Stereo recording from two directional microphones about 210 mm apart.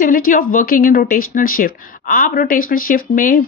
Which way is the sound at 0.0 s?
40° left (ahead or behind).